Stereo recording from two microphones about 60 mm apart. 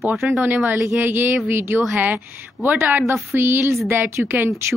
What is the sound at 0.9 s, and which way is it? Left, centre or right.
A woman's voice, right.